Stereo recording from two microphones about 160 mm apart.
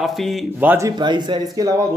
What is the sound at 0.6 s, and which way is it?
Speech, 10° right (ahead or behind).